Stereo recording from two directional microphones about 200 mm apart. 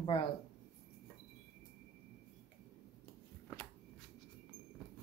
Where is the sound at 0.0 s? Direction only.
25° left (ahead or behind).